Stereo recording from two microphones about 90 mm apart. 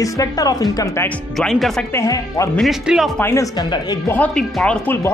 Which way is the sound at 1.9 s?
35° left (ahead or behind).